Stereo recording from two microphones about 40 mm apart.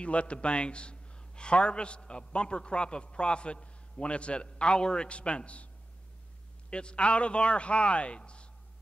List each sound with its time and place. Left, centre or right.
0.0 s a man's voice: left
6.7 s a man's voice: left